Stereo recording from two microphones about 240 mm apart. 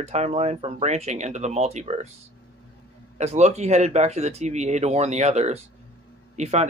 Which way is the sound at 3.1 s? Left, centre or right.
Right.